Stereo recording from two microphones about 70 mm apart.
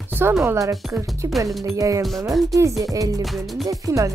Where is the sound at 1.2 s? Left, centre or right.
Right.